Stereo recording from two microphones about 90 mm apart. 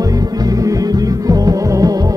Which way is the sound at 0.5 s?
40° right (ahead or behind).